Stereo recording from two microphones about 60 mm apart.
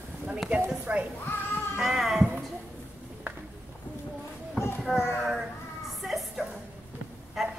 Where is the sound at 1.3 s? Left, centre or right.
Left.